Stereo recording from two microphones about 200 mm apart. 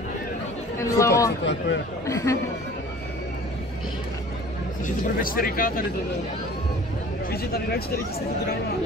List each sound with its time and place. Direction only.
0.7 s chatter: 15° left (ahead or behind)
1.4 s speech: 60° left (ahead or behind)
2.0 s speech: 15° left (ahead or behind)
4.8 s speech: 45° left (ahead or behind)
7.2 s speech: 50° left (ahead or behind)